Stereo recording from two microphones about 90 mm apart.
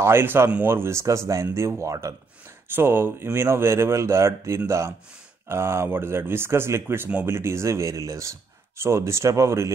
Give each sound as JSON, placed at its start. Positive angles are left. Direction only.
{"t": 0.0, "sound": "speech", "side_deg": -25}
{"t": 2.7, "sound": "speech", "side_deg": -25}